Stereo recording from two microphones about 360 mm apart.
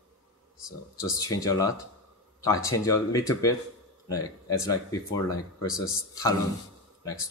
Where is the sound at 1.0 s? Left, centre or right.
Centre.